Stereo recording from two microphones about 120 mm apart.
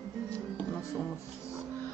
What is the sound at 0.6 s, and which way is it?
Speech, 10° left (ahead or behind).